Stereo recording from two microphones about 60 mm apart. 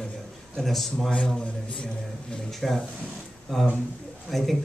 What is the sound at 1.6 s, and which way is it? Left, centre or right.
Speech, centre.